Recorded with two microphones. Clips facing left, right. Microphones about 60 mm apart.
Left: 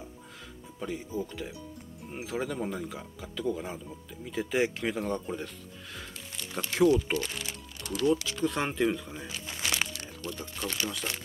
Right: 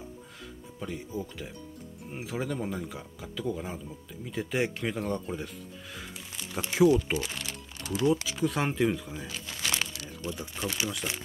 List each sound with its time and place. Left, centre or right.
0.7 s speech: centre
5.9 s music: centre
6.7 s speech: centre
7.8 s music: right
8.3 s speech: centre
10.2 s speech: centre